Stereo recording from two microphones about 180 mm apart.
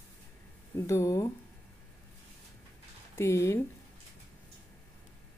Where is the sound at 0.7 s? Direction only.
15° left (ahead or behind).